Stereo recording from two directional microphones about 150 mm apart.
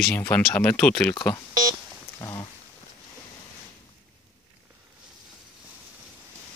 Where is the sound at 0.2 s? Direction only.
10° left (ahead or behind).